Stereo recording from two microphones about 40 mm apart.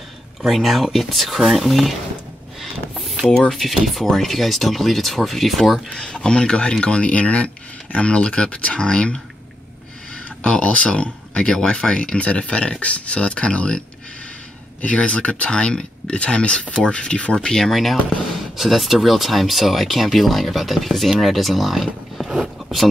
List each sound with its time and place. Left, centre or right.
0.5 s speech: centre
3.3 s speech: centre
3.5 s speech: centre
6.1 s speech: left
10.6 s speech: left
14.8 s speech: left
17.6 s speech: centre
22.4 s a sound: centre